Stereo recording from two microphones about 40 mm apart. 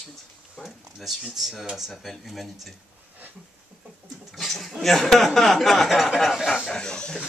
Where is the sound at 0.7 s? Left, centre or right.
Centre.